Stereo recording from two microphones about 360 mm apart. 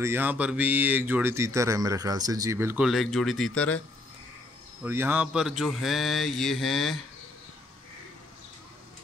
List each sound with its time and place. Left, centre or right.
0.0 s speech: centre
4.8 s speech: centre